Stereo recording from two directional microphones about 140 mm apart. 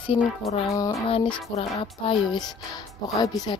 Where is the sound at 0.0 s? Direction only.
40° left (ahead or behind).